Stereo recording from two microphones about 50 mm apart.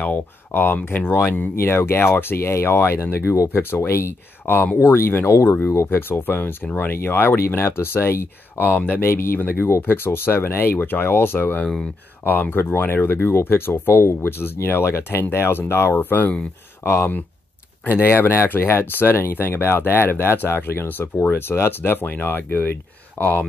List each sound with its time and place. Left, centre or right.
0.0 s speech: left
3.5 s speech: left
5.9 s speech: left
9.0 s speech: left
16.0 s speech: left
16.8 s speech: left
17.8 s speech: left